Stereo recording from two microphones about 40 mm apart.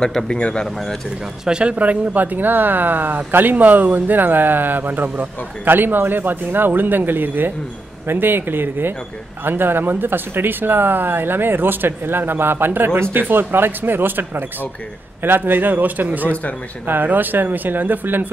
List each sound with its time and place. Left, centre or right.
0.0 s a man's voice: centre
1.4 s speech: right
5.7 s speech: right